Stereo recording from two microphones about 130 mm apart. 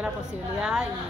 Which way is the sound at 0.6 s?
5° right (ahead or behind).